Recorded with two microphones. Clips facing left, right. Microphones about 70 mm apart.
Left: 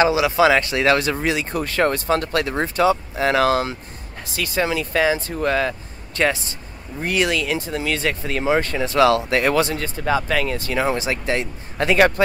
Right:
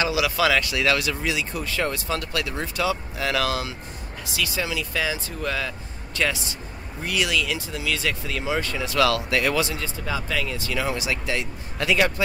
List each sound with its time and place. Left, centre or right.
0.0 s speech: left